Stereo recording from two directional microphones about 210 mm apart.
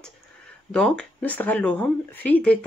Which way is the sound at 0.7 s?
5° left (ahead or behind).